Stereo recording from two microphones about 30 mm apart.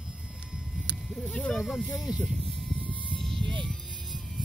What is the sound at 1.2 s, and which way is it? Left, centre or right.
Speech, left.